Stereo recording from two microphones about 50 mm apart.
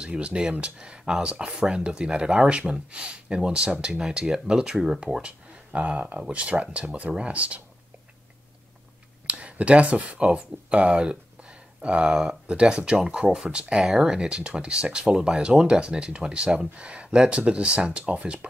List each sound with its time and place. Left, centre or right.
0.0 s speech: centre
9.3 s speech: right